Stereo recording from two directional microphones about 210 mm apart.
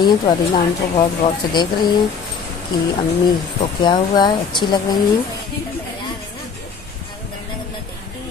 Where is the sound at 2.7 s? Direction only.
20° left (ahead or behind).